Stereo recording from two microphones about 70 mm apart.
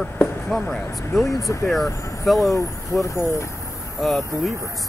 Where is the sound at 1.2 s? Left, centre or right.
Left.